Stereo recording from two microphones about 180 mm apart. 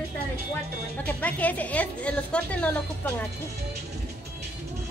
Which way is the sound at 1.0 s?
10° left (ahead or behind).